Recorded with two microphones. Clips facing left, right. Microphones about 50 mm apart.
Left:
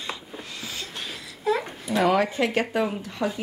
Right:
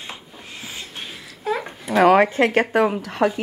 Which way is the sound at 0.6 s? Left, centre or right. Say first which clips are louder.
Right 2 dB; right.